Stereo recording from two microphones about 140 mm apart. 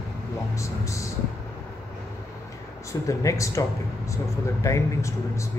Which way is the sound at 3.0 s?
25° left (ahead or behind).